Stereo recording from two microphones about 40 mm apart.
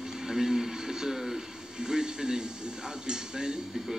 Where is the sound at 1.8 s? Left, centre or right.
Centre.